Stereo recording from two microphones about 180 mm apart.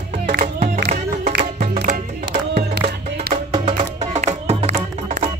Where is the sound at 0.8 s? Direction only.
40° right (ahead or behind).